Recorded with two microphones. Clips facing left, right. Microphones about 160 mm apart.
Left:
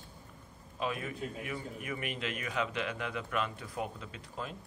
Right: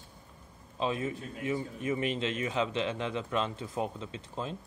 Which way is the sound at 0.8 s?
25° right (ahead or behind).